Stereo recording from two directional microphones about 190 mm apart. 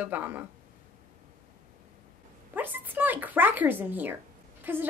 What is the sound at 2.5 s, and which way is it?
A woman's voice, 10° right (ahead or behind).